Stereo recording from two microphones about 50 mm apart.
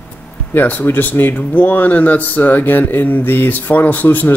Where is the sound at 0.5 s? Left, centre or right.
Left.